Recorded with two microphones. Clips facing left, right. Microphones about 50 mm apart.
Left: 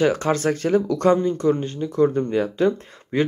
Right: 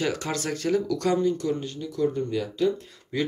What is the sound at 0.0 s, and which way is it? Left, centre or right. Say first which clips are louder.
Speech: left 8 dB; left.